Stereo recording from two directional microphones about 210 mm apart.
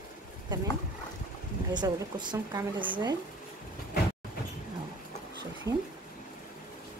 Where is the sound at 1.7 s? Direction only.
20° right (ahead or behind).